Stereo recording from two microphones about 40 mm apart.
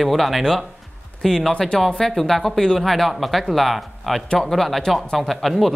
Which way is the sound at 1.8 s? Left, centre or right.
Centre.